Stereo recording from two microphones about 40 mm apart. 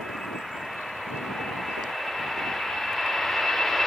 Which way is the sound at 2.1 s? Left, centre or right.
Centre.